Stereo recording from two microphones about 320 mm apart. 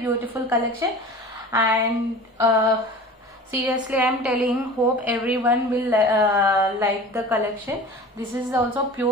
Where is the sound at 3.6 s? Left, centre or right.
Centre.